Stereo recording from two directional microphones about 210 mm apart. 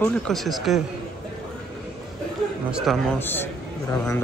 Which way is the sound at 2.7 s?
5° right (ahead or behind).